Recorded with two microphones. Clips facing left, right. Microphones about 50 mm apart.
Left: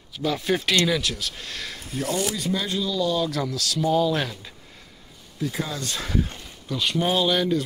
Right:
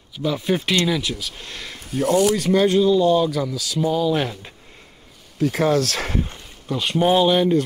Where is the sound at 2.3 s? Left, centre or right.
Right.